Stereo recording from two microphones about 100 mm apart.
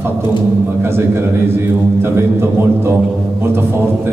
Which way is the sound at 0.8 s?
25° right (ahead or behind).